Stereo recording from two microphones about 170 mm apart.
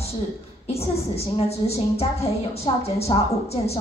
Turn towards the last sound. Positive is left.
turn(degrees=35)  # may be behind; listen again after turning